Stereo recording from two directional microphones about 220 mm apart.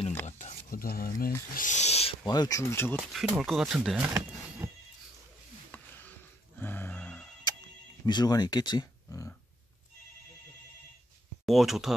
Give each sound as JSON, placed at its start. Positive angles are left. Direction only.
{"t": 0.4, "sound": "stir", "side_deg": 35}
{"t": 1.5, "sound": "speech", "side_deg": 35}
{"t": 3.0, "sound": "speech", "side_deg": 0}
{"t": 4.6, "sound": "a sound", "side_deg": -10}
{"t": 6.6, "sound": "a sound", "side_deg": 10}
{"t": 8.0, "sound": "speech", "side_deg": 20}
{"t": 11.4, "sound": "speech", "side_deg": 0}